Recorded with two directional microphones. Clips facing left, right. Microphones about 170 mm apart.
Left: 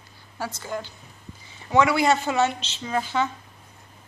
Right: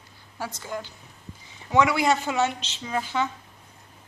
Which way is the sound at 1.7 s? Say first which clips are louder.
Left 2 dB; 15° right (ahead or behind).